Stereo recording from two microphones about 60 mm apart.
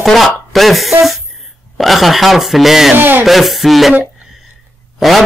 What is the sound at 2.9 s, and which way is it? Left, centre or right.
Hands, right.